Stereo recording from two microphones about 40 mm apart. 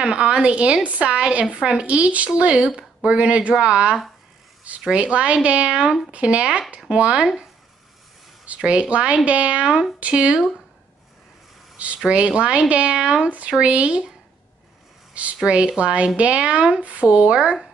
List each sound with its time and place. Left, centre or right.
0.0 s a woman's voice: right
8.5 s a woman's voice: right
11.7 s a sound: right
12.0 s a woman's voice: right
15.4 s a woman's voice: right